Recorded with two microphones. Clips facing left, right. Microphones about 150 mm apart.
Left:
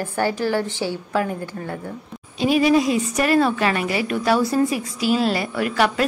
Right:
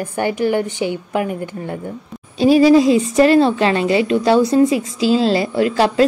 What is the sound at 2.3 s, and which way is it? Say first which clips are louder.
A woman's voice: right 7 dB; 35° right (ahead or behind).